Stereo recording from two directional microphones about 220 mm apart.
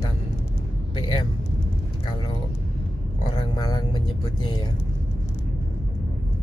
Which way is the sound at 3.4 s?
20° left (ahead or behind).